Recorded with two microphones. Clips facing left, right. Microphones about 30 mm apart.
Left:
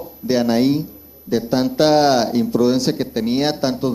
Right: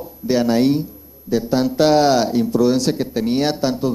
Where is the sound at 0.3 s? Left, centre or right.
Centre.